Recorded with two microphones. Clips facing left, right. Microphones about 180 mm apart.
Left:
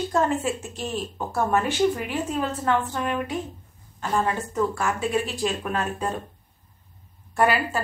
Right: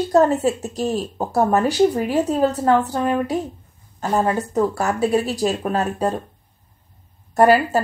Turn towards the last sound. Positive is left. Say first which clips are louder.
# right 8 dB
turn(degrees=-40)  # may be behind; listen again after turning